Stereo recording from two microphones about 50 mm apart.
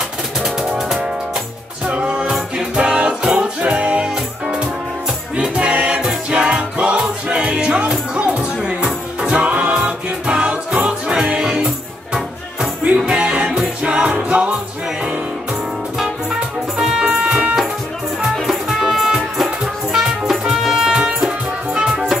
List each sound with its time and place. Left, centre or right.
0.4 s music: centre
1.9 s music: right
4.1 s music: centre
16.3 s music: centre
18.4 s music: centre